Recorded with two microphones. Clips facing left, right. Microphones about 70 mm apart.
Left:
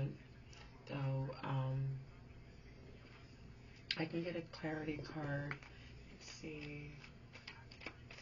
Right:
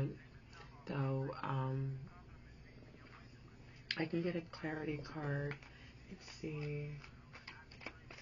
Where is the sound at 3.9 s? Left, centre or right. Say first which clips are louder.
Right 3 dB; right.